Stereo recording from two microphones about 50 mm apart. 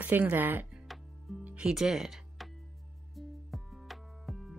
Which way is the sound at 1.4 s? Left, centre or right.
Right.